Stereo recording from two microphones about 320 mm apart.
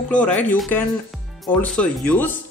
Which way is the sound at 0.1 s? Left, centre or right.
Centre.